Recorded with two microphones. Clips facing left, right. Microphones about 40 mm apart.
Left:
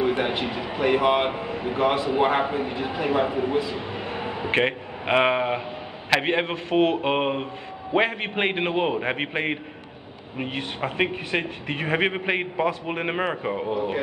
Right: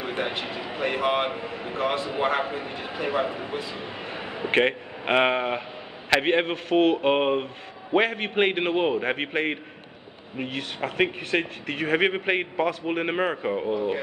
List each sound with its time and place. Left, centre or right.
0.0 s a man's voice: left
1.3 s a man's voice: left
3.9 s a sound: left
4.5 s a man's voice: centre
12.0 s a man's voice: centre